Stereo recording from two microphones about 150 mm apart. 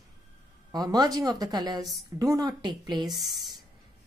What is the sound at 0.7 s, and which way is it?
A woman's voice, 25° right (ahead or behind).